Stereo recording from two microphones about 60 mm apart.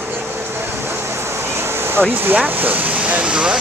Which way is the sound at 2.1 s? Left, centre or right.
Right.